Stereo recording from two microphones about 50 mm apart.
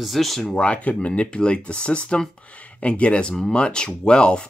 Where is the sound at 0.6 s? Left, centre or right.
Left.